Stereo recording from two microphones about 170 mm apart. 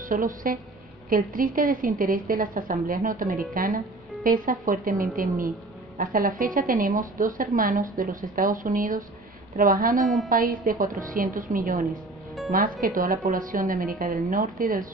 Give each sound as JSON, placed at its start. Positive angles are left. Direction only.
{"t": 0.1, "sound": "a woman's voice", "side_deg": -55}
{"t": 10.0, "sound": "a woman's voice", "side_deg": 0}
{"t": 10.3, "sound": "a woman's voice", "side_deg": -55}